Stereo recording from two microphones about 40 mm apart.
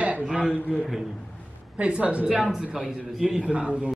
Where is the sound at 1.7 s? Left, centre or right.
Right.